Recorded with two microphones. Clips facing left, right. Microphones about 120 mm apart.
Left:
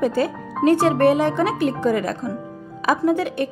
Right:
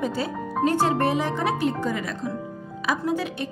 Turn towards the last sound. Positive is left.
turn(degrees=55)  # may be behind; listen again after turning